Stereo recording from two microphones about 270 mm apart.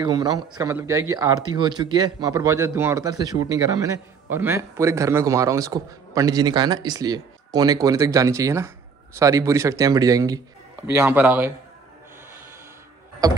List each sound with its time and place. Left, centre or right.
0.0 s speech: centre